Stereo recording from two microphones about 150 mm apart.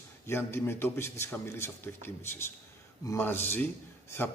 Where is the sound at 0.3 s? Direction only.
15° left (ahead or behind).